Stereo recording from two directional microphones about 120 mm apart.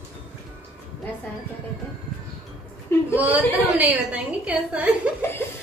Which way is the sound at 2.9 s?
20° left (ahead or behind).